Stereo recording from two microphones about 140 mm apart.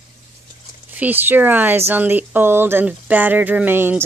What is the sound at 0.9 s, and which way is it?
Speech, 15° right (ahead or behind).